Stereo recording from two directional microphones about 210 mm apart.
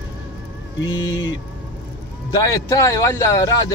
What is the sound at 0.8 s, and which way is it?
Speech, 65° left (ahead or behind).